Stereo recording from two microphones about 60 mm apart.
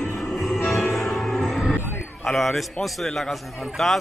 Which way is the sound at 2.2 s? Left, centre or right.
Centre.